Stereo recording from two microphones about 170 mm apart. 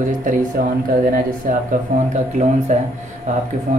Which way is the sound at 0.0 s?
50° right (ahead or behind).